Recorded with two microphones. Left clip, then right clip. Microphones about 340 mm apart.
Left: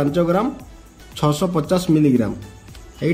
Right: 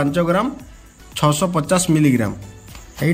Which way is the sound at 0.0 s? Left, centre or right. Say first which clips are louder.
Even; centre.